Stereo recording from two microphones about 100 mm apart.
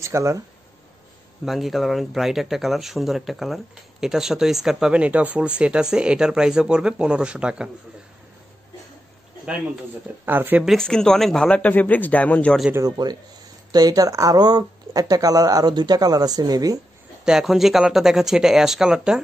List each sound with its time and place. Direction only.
0.0 s speech: 30° right (ahead or behind)
1.4 s speech: centre (ahead or behind)
10.2 s speech: 20° right (ahead or behind)
10.6 s a man's voice: centre (ahead or behind)
12.8 s speech: 45° right (ahead or behind)
17.2 s speech: 5° right (ahead or behind)